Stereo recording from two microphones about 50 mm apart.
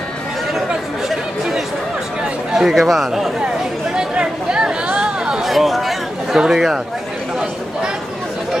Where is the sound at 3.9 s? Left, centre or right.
Centre.